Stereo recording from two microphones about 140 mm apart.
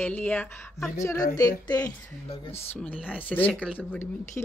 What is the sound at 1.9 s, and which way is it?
Speech, 10° left (ahead or behind).